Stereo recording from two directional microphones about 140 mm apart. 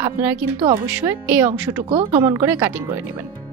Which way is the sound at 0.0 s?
15° right (ahead or behind).